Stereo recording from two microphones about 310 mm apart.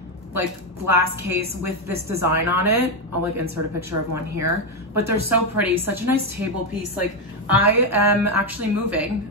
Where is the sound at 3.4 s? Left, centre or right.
Right.